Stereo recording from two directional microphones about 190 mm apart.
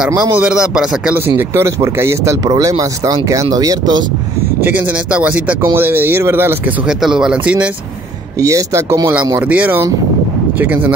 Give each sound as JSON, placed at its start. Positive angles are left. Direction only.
{"t": 0.4, "sound": "speech", "side_deg": -5}
{"t": 4.6, "sound": "speech", "side_deg": -10}
{"t": 8.4, "sound": "speech", "side_deg": -15}